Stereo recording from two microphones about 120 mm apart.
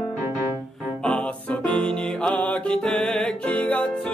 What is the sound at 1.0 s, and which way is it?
Music, 10° left (ahead or behind).